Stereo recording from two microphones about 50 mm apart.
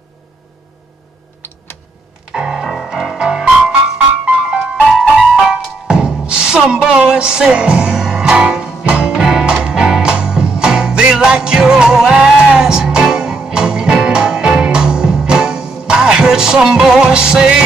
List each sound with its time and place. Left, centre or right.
2.3 s music: centre
2.6 s music: centre
9.2 s music: centre
9.5 s music: centre